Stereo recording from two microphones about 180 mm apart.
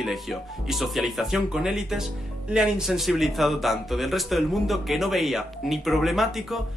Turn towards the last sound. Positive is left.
turn(degrees=0)  # may be behind; listen again after turning